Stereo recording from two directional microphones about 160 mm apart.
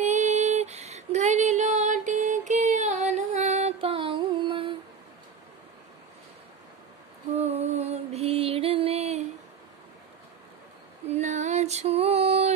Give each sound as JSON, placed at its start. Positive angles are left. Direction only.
{"t": 0.0, "sound": "female singing", "side_deg": -50}
{"t": 7.3, "sound": "music", "side_deg": -40}
{"t": 11.1, "sound": "female singing", "side_deg": -45}